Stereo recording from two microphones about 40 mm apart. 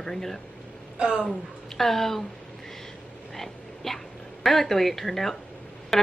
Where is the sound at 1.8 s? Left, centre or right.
Centre.